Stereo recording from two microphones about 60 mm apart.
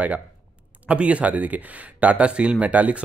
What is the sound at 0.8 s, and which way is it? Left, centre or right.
A woman's voice, right.